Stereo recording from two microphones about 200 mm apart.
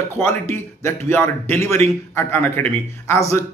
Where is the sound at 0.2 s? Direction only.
10° left (ahead or behind).